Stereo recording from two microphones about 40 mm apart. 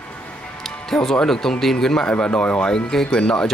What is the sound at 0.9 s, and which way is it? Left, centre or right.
Speech, centre.